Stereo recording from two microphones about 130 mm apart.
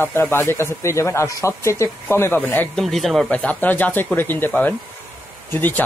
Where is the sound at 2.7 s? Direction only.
Centre (ahead or behind).